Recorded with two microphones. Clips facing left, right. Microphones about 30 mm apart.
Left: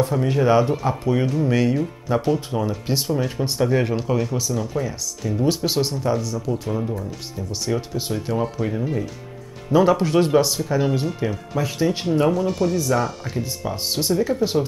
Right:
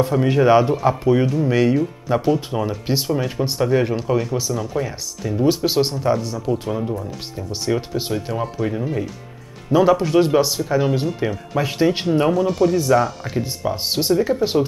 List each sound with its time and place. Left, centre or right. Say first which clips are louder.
0.2 s speech: right 4 dB; centre
5.8 s speech: right 3 dB; right
8.1 s speech: left 3 dB; centre
11.1 s speech: right 2 dB; centre
12.4 s speech: right 4 dB; centre
12.7 s speech: right 4 dB; centre